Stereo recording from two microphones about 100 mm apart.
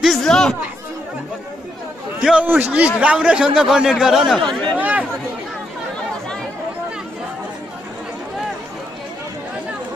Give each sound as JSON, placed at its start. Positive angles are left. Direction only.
{"t": 0.0, "sound": "chatter", "side_deg": 5}
{"t": 2.4, "sound": "a man's voice", "side_deg": -15}
{"t": 4.5, "sound": "speech", "side_deg": 10}
{"t": 4.7, "sound": "chatter", "side_deg": -15}